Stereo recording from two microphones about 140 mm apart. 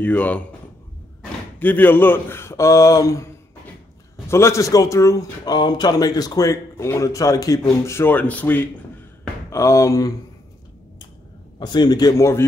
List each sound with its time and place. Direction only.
0.0 s speech: 10° left (ahead or behind)
1.6 s speech: 15° left (ahead or behind)
4.3 s speech: 20° left (ahead or behind)
11.6 s speech: 30° left (ahead or behind)